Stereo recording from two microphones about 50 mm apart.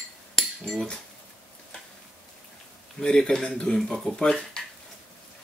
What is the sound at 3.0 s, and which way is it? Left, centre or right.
Speech, centre.